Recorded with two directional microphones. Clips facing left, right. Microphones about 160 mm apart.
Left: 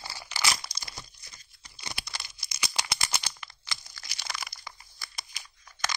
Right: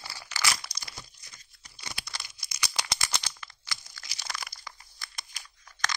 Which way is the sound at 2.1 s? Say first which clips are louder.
Left 1 dB; 10° left (ahead or behind).